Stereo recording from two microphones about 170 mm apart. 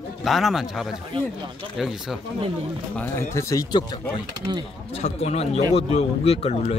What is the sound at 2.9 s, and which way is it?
Speech, 15° left (ahead or behind).